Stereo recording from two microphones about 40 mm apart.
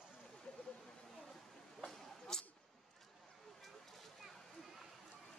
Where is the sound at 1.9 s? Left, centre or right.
Centre.